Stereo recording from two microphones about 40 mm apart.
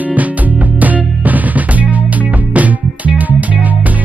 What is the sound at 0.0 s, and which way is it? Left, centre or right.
Music, right.